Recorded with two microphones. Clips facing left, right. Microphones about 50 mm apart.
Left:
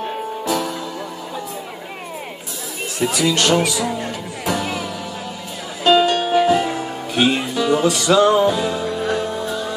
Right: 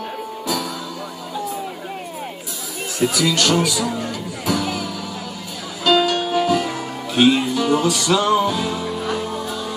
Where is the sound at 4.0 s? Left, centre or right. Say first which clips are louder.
Even; left.